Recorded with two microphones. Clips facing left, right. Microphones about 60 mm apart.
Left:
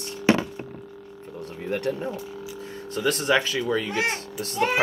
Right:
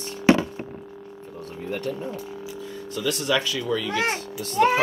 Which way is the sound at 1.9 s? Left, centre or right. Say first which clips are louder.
Left 2 dB; left.